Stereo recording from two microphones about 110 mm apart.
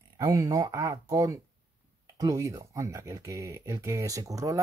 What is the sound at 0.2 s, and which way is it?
Speech, 35° right (ahead or behind).